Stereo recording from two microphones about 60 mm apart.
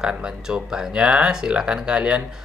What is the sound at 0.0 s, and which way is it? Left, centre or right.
Speech, centre.